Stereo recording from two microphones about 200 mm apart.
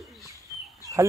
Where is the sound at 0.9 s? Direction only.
20° right (ahead or behind).